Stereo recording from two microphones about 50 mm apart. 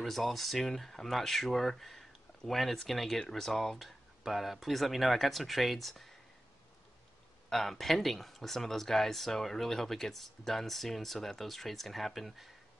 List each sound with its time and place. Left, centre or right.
0.0 s speech: centre
7.4 s speech: centre